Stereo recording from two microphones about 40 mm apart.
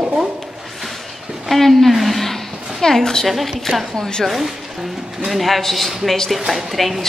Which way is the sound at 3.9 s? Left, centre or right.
Centre.